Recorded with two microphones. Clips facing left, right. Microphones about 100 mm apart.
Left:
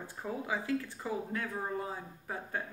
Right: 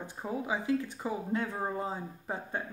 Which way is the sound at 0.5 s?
20° right (ahead or behind).